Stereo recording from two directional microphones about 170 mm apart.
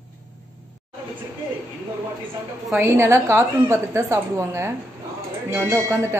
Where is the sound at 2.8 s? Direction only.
15° right (ahead or behind).